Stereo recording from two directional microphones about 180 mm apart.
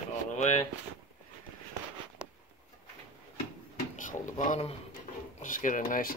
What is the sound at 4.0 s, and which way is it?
Drawer open or close, 45° left (ahead or behind).